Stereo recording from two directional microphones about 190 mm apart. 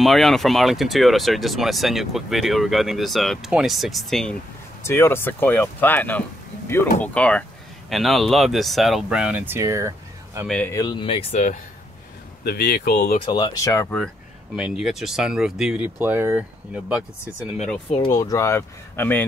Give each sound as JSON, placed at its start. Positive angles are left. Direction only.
{"t": 0.0, "sound": "speech", "side_deg": 0}
{"t": 10.4, "sound": "speech", "side_deg": 5}
{"t": 10.7, "sound": "speech", "side_deg": 20}
{"t": 12.4, "sound": "speech", "side_deg": 55}
{"t": 13.1, "sound": "speech", "side_deg": 30}
{"t": 18.0, "sound": "speech", "side_deg": 20}